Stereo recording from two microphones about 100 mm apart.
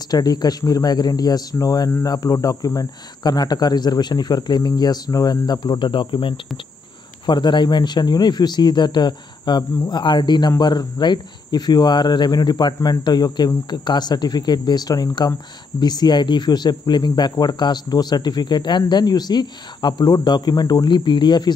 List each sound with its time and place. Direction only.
0.1 s speech: 40° left (ahead or behind)